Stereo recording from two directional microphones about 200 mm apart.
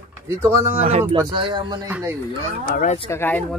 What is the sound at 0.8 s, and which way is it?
Speech, 30° right (ahead or behind).